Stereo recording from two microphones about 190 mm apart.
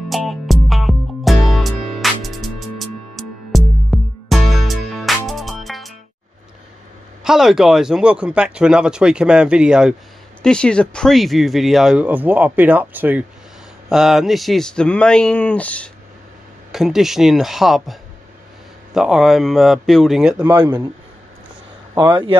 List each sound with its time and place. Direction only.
0.1 s music: centre (ahead or behind)
7.2 s speech: centre (ahead or behind)
18.9 s speech: 5° right (ahead or behind)
21.9 s speech: 20° right (ahead or behind)